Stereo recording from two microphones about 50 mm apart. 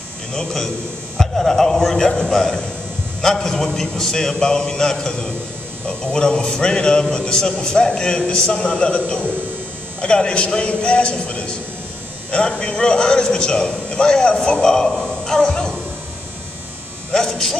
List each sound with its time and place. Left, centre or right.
0.3 s a man's voice: centre
17.1 s hum: centre